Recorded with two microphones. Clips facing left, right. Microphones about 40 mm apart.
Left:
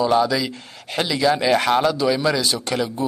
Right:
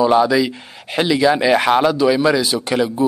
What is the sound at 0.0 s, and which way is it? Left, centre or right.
Speech, centre.